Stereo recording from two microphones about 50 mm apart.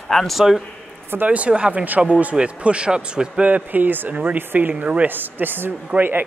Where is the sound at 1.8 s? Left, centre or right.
Right.